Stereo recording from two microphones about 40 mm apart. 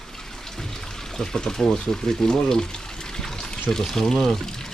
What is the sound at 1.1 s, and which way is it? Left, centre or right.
Speech, centre.